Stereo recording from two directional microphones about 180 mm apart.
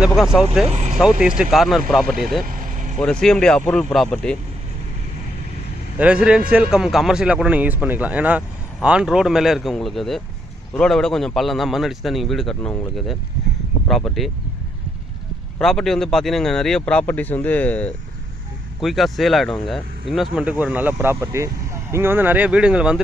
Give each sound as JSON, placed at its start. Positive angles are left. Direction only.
{"t": 0.0, "sound": "a man's voice", "side_deg": -5}
{"t": 0.7, "sound": "vehicle", "side_deg": -40}
{"t": 1.2, "sound": "a man's voice", "side_deg": -5}
{"t": 5.9, "sound": "a man's voice", "side_deg": -5}
{"t": 15.6, "sound": "a man's voice", "side_deg": 0}